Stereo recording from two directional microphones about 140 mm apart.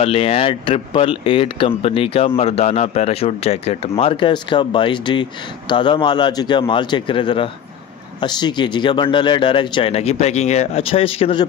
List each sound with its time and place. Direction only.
0.0 s speech: 45° left (ahead or behind)